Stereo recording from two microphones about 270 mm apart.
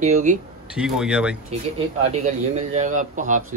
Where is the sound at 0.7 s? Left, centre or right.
Centre.